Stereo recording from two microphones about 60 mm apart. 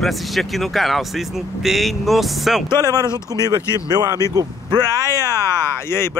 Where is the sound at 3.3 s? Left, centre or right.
Right.